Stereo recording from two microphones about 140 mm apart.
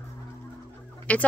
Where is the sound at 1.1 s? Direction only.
10° left (ahead or behind).